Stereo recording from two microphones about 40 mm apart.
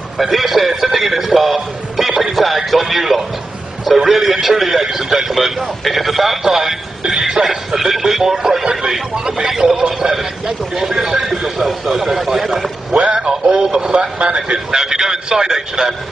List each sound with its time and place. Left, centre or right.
0.2 s a man's voice: centre
7.1 s cough: centre
7.4 s a man's voice: centre
13.2 s speech: centre
14.7 s speech: centre